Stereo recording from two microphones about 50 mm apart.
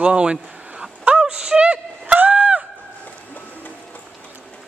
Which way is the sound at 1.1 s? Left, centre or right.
Centre.